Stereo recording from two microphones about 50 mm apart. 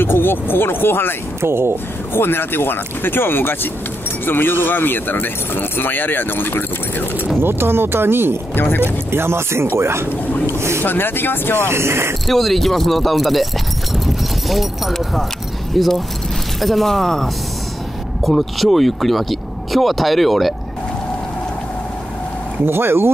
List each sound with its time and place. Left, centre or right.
0.0 s speech: left
1.4 s speech: right
2.1 s speech: left
7.3 s speech: right
8.5 s speech: left
9.1 s speech: right
10.8 s speech: left
11.7 s speech: right
12.3 s speech: centre
13.9 s clip-clop: centre
15.7 s speech: centre
22.7 s speech: right